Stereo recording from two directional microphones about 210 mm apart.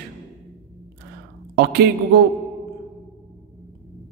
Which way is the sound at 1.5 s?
55° right (ahead or behind).